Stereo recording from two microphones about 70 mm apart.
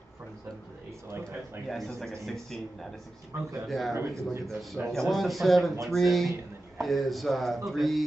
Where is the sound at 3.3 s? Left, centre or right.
Right.